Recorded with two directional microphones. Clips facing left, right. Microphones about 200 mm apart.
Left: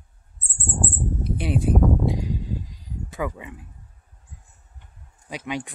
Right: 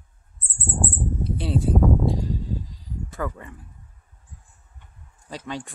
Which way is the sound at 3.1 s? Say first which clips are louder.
Left 2 dB; 10° left (ahead or behind).